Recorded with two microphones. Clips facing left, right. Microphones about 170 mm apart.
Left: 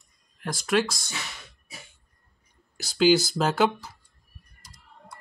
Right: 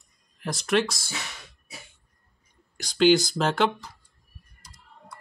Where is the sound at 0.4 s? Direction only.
Centre (ahead or behind).